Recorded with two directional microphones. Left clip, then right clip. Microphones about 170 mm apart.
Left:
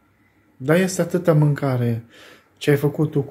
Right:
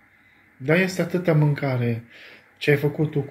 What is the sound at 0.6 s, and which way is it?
Speech, 25° left (ahead or behind).